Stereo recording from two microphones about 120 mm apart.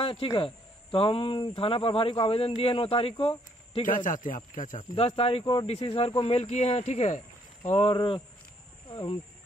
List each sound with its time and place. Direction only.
0.0 s speech: 45° left (ahead or behind)
3.8 s a man's voice: 90° left
4.9 s speech: 55° left (ahead or behind)